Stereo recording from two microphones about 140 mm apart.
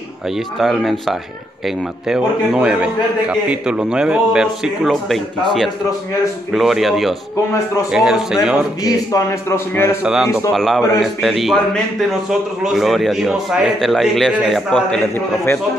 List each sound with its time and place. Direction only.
0.6 s a man's voice: centre (ahead or behind)
6.5 s a man's voice: centre (ahead or behind)
8.8 s a man's voice: 20° left (ahead or behind)
10.0 s a man's voice: 5° right (ahead or behind)